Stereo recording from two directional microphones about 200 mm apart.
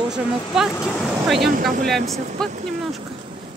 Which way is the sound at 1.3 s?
50° right (ahead or behind).